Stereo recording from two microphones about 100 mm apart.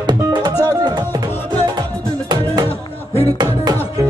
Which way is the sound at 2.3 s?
45° right (ahead or behind).